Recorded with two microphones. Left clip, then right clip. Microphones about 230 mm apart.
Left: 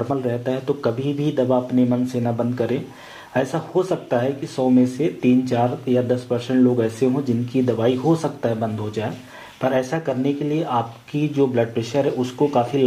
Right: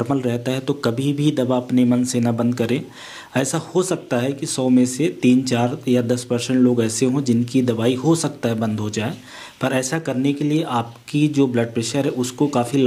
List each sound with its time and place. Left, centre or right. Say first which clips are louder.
0.1 s speech: right 1 dB; right